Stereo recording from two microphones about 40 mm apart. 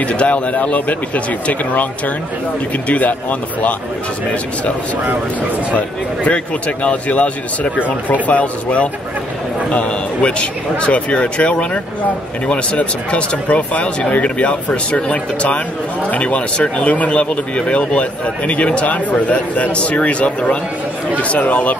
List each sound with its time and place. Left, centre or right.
0.0 s speech: left
5.8 s speech: left